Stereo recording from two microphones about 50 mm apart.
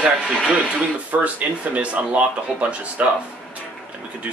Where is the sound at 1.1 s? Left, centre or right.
Right.